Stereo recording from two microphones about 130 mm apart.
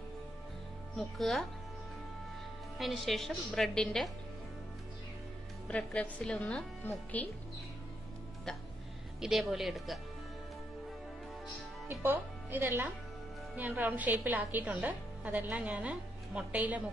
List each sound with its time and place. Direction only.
0.9 s a woman's voice: centre (ahead or behind)
2.8 s a woman's voice: centre (ahead or behind)
5.7 s a woman's voice: 10° left (ahead or behind)
9.2 s a woman's voice: centre (ahead or behind)
11.9 s a woman's voice: 15° right (ahead or behind)